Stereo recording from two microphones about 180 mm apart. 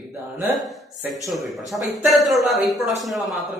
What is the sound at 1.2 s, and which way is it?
A man's voice, centre (ahead or behind).